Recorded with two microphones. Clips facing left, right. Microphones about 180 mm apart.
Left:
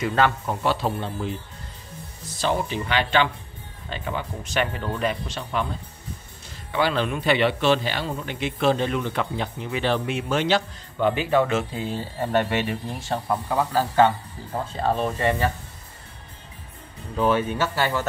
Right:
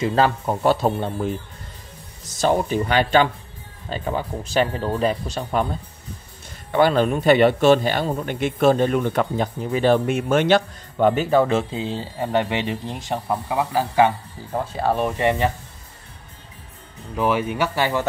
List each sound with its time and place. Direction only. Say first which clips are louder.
0.0 s speech: right 3 dB; 30° right (ahead or behind)
2.4 s a man's voice: right 5 dB; 45° right (ahead or behind)
6.7 s a man's voice: right 6 dB; 50° right (ahead or behind)
11.7 s speech: right 2 dB; 20° right (ahead or behind)
17.1 s speech: even; 10° right (ahead or behind)